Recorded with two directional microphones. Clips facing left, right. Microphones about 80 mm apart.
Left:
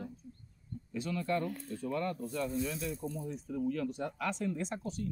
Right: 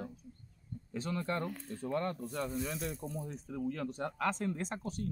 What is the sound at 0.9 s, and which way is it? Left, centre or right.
Speech, right.